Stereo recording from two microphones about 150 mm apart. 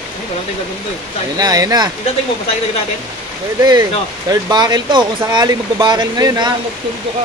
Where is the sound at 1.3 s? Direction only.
25° right (ahead or behind).